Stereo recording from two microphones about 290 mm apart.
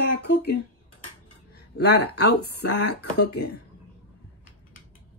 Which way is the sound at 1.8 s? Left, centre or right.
Left.